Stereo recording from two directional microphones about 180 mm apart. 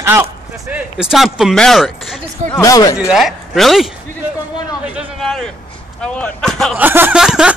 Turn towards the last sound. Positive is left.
turn(degrees=-5)  # may be behind; listen again after turning